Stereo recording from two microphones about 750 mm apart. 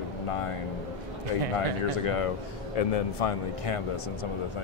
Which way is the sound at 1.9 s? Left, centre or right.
Left.